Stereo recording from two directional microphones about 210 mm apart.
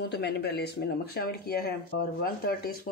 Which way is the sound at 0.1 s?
50° left (ahead or behind).